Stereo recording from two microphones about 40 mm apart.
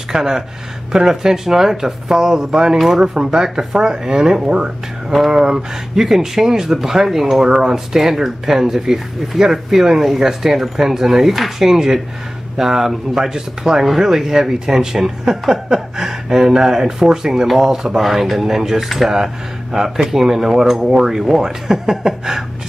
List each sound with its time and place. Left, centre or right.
0.1 s speech: centre